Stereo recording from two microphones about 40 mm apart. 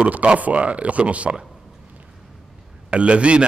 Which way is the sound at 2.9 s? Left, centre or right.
Right.